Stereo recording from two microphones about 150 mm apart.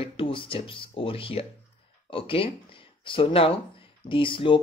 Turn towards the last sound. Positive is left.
turn(degrees=35)  # may be behind; listen again after turning